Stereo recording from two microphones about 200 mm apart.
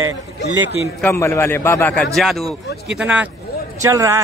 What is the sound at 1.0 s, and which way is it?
A man's voice, 10° left (ahead or behind).